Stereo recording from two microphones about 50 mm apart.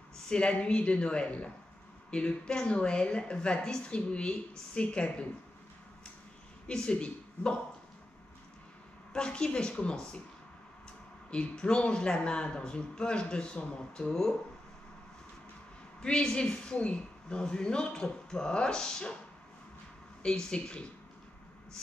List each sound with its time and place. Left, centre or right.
0.3 s a woman's voice: centre
6.7 s speech: centre
9.1 s a woman's voice: centre
11.2 s a woman's voice: centre
16.0 s a man's voice: centre
20.2 s a man's voice: centre